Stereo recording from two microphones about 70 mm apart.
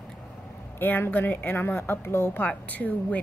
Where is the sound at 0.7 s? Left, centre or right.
Left.